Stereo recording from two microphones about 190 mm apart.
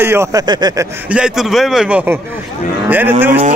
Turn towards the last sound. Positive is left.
turn(degrees=-40)  # may be behind; listen again after turning